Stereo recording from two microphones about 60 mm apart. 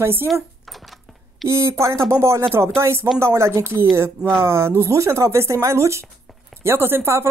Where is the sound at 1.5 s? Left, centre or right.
Right.